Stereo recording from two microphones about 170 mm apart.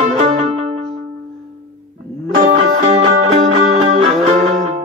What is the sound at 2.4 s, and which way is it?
Music, 45° right (ahead or behind).